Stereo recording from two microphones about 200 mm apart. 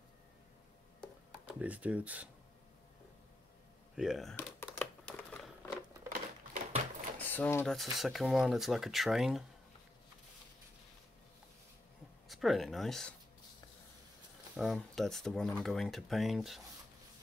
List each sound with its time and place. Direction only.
1.6 s speech: 5° right (ahead or behind)
3.9 s crumpling: centre (ahead or behind)
6.0 s typewriter: 40° right (ahead or behind)
7.2 s speech: 10° left (ahead or behind)
12.3 s speech: centre (ahead or behind)
14.6 s speech: centre (ahead or behind)